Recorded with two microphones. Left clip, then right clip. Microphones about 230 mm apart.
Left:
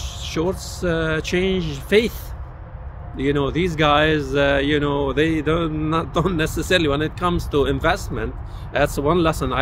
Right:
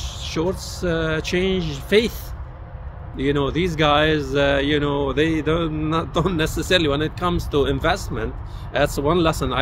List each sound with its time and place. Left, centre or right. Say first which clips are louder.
0.0 s speech: even; centre
3.2 s speech: even; centre